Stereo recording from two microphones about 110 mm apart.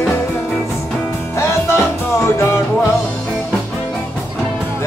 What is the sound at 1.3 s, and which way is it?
Music, 25° left (ahead or behind).